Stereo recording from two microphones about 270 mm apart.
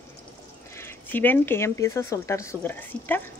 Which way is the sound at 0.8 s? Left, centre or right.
Centre.